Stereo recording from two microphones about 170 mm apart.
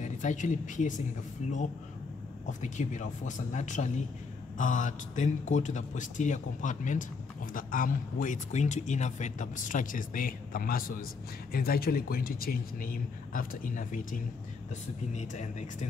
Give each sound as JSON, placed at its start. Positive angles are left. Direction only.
{"t": 0.0, "sound": "a man's voice", "side_deg": 45}